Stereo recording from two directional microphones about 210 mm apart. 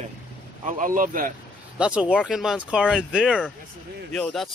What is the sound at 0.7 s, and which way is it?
Speech, 40° right (ahead or behind).